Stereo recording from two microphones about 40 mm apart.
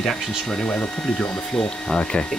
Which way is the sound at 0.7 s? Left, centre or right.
Left.